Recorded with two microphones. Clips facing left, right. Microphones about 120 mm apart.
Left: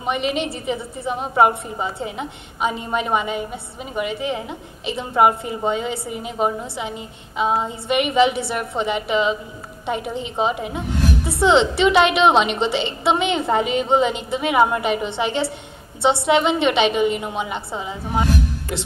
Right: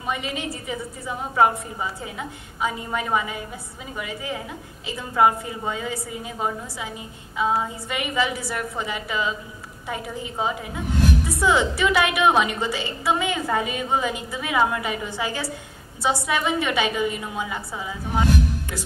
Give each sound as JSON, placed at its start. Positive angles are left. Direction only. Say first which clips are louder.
{"t": 0.0, "sound": "a woman's voice", "louder": "left 6 dB", "side_deg": 20}